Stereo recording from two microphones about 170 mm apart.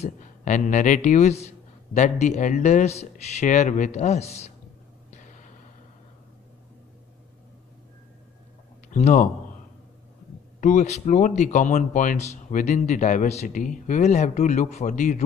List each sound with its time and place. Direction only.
0.0 s speech: 45° left (ahead or behind)
8.9 s speech: 50° left (ahead or behind)
10.6 s speech: 45° left (ahead or behind)